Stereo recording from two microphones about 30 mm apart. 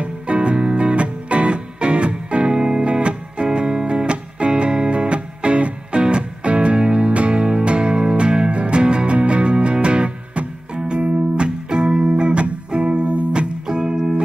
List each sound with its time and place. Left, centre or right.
0.0 s music: right
2.5 s music: right
2.9 s music: right
3.4 s music: right
13.7 s music: right